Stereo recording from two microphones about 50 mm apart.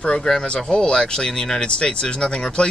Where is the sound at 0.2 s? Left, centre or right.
Centre.